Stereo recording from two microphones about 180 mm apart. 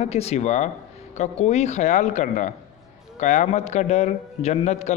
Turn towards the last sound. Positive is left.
turn(degrees=40)  # may be behind; listen again after turning